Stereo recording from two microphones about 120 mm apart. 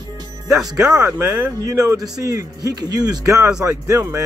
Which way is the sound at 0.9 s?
20° right (ahead or behind).